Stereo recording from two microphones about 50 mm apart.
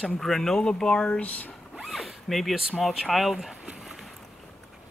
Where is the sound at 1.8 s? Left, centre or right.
Centre.